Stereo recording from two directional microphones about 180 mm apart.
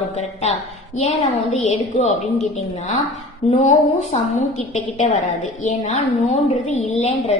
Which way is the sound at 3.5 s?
45° left (ahead or behind).